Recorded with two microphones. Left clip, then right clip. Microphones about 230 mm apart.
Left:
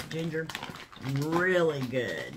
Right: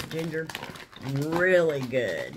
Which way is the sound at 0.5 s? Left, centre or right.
Centre.